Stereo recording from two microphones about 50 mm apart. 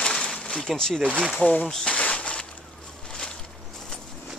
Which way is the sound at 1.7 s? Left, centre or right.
Centre.